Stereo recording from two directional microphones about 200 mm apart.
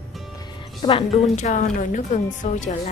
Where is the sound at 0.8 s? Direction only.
30° left (ahead or behind).